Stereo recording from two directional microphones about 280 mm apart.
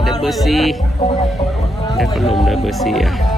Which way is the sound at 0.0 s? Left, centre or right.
Centre.